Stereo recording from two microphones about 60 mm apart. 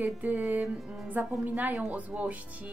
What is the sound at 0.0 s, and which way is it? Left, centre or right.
Speech, right.